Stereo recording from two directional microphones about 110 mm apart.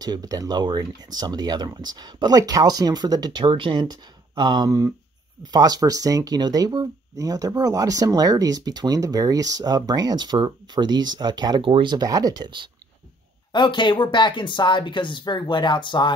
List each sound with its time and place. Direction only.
0.0 s speech: 35° right (ahead or behind)
13.5 s speech: 45° left (ahead or behind)